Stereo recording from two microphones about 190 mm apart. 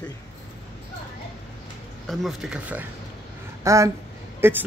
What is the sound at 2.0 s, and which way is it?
Speech, centre (ahead or behind).